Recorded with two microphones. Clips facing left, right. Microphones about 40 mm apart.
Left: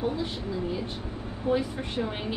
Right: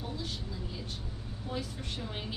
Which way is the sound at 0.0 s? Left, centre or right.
Left.